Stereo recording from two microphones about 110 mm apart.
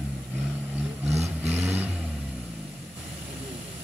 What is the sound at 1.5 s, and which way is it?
Vehicle, 15° right (ahead or behind).